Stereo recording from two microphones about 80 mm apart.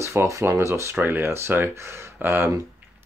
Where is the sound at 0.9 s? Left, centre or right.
Right.